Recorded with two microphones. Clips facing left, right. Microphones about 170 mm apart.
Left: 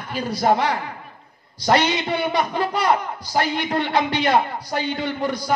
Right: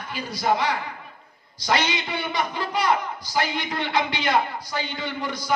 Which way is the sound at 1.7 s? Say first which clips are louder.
Left 5 dB; 40° left (ahead or behind).